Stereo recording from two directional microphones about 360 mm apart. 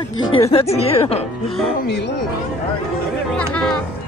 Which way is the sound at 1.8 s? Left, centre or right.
Left.